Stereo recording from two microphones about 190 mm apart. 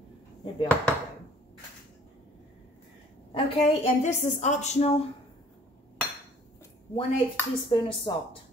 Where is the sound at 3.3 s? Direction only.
30° left (ahead or behind).